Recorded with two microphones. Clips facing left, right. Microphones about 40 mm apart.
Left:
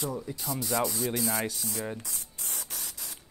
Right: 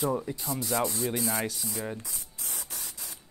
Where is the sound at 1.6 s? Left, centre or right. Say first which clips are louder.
Even; centre.